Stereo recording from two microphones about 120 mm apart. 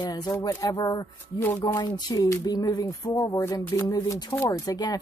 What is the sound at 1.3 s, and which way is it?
Speech, 20° left (ahead or behind).